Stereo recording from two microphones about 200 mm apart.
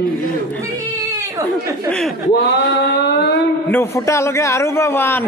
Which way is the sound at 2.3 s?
55° left (ahead or behind).